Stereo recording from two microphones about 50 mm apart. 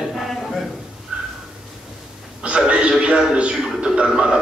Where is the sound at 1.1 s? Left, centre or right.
Centre.